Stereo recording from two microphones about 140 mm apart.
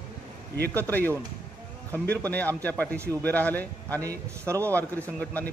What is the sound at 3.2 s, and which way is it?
Speech, 10° left (ahead or behind).